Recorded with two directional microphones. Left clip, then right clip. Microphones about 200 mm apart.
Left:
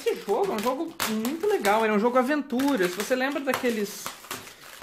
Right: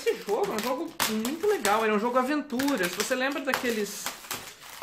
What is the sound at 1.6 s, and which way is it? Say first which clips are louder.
Speech: left 5 dB; 40° left (ahead or behind).